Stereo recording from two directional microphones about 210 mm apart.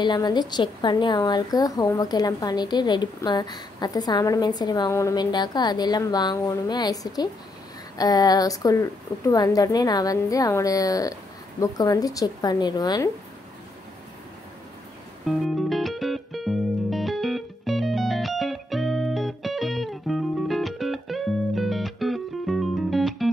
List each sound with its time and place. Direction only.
0.0 s a woman's voice: 20° left (ahead or behind)
15.2 s music: centre (ahead or behind)